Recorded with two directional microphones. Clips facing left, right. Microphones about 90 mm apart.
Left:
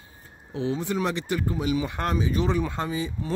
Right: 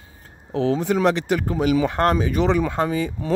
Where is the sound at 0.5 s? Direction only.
90° right.